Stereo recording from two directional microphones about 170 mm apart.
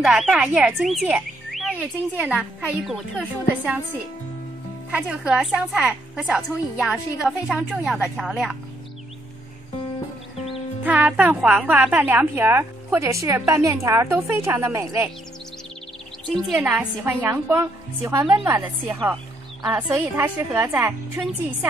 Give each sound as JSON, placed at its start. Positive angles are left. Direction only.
{"t": 0.0, "sound": "speech", "side_deg": -5}
{"t": 4.9, "sound": "speech", "side_deg": -5}
{"t": 10.8, "sound": "speech", "side_deg": -10}
{"t": 16.5, "sound": "speech", "side_deg": -10}